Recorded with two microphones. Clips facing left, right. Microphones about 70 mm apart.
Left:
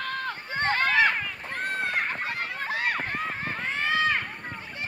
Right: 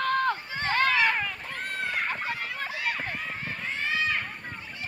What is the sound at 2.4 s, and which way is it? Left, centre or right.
Run, left.